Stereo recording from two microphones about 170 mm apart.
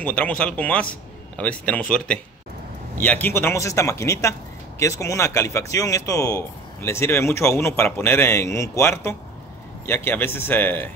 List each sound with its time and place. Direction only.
0.0 s speech: 10° left (ahead or behind)